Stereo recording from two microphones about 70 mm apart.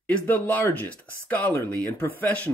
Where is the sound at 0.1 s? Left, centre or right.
Left.